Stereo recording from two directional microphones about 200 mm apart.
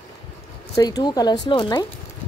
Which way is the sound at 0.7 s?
20° left (ahead or behind).